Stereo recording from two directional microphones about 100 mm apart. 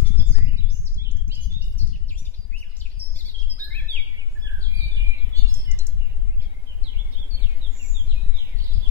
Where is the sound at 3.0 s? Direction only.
20° left (ahead or behind).